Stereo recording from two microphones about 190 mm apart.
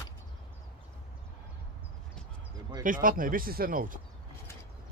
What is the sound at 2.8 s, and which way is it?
Speech, 45° right (ahead or behind).